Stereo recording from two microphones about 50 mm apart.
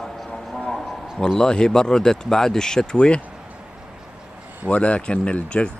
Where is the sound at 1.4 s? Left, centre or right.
Centre.